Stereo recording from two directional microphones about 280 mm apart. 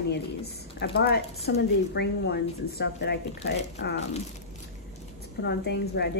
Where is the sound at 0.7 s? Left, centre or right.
Left.